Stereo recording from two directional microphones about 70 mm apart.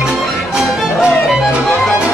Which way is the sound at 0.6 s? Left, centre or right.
Centre.